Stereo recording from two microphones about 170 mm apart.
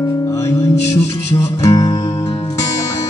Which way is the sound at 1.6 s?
20° left (ahead or behind).